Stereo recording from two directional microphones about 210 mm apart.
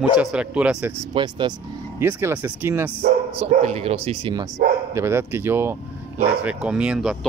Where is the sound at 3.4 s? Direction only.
30° right (ahead or behind).